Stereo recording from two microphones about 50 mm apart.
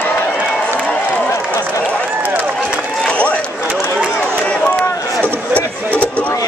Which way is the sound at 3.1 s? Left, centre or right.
Left.